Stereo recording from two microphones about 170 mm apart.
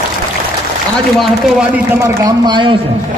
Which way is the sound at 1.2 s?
5° right (ahead or behind).